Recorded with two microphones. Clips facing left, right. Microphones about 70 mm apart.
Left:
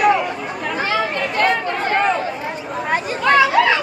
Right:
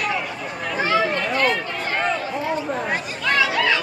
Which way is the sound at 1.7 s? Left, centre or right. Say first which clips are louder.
Left 6 dB; left.